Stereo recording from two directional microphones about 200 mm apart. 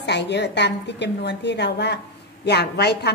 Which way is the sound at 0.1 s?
60° left (ahead or behind).